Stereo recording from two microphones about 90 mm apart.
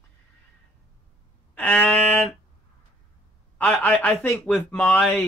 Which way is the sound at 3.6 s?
15° left (ahead or behind).